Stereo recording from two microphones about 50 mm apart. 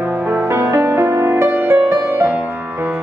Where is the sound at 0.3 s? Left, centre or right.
Right.